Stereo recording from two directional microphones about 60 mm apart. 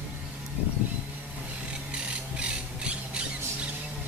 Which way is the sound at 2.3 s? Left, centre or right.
Centre.